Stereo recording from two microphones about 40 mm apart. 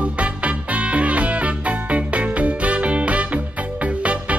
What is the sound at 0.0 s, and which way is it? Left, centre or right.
Music, right.